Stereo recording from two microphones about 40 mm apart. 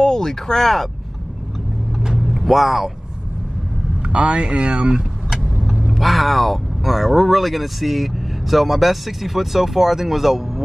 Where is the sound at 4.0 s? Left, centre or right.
Right.